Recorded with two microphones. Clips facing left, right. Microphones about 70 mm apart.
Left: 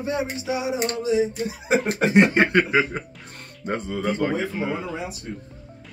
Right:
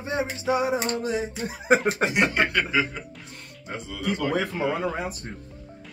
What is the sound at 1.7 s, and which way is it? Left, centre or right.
Speech, right.